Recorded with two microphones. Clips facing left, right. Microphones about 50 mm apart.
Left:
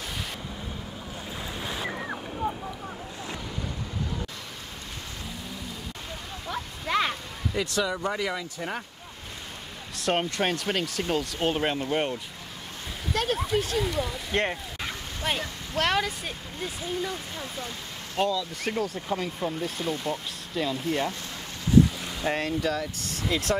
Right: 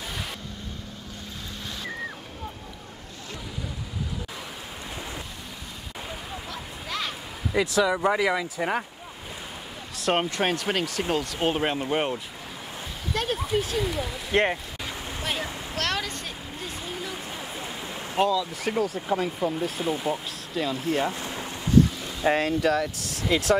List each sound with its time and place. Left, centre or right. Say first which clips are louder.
1.7 s waves: left 2 dB; left
2.4 s a sound: left 10 dB; centre
6.5 s a sound: left 9 dB; left
7.5 s speech: right 5 dB; centre
9.9 s speech: right 2 dB; centre
14.3 s speech: right 5 dB; centre
15.7 s speech: left 5 dB; centre
16.9 s a sound: left 2 dB; centre
18.2 s speech: right 3 dB; centre
21.1 s boat: right 4 dB; right
22.2 s speech: right 5 dB; centre